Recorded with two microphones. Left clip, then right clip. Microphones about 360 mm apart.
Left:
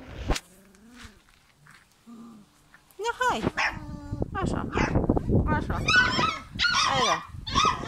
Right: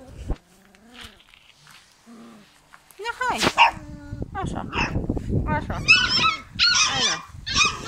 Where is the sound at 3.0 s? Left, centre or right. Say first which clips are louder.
Right 1 dB; centre.